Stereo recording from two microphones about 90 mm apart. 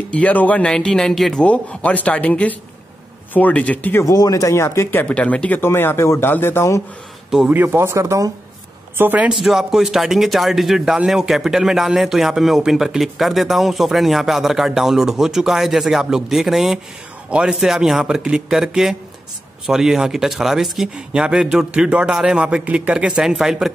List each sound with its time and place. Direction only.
0.1 s speech: 15° left (ahead or behind)
4.1 s speech: 40° left (ahead or behind)
5.0 s speech: 15° left (ahead or behind)
5.6 s speech: 25° left (ahead or behind)
7.4 s speech: 20° right (ahead or behind)
8.9 s speech: 20° right (ahead or behind)
9.3 s speech: 5° right (ahead or behind)